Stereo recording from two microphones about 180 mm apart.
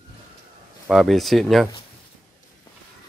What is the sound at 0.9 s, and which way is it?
Speech, centre (ahead or behind).